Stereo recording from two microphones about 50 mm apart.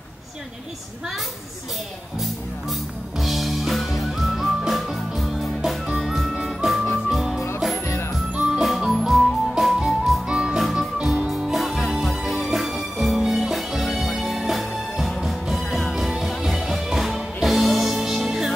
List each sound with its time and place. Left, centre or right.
2.7 s music: centre
7.8 s music: left
8.4 s music: centre
10.2 s music: centre
10.6 s music: centre